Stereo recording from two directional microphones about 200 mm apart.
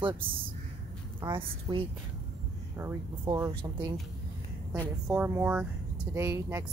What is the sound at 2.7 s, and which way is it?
Speech, 10° right (ahead or behind).